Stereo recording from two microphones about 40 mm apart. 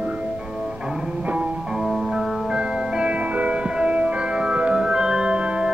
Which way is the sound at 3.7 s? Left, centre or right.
Right.